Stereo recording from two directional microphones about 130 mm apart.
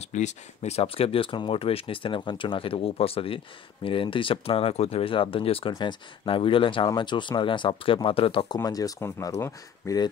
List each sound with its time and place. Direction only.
0.0 s speech: 65° left (ahead or behind); by 5.7 s 45° left (ahead or behind)
5.7 s speech: 35° left (ahead or behind)
8.6 s speech: 30° left (ahead or behind)